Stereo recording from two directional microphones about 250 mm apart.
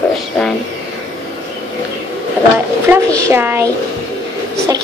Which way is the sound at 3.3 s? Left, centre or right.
Centre.